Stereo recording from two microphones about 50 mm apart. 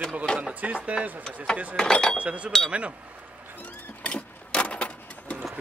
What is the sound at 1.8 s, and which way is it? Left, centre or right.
Speech, centre.